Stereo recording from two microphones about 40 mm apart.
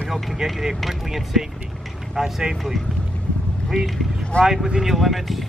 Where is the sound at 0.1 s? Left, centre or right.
Centre.